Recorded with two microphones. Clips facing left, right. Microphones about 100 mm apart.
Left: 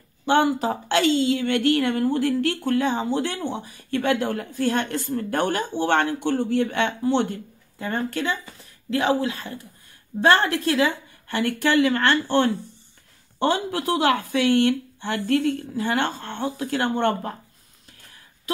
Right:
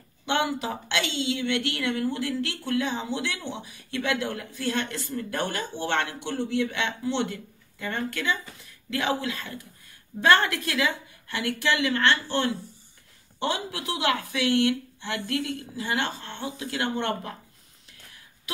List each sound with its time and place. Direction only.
0.2 s a woman's voice: 40° left (ahead or behind)
11.2 s a woman's voice: 50° left (ahead or behind)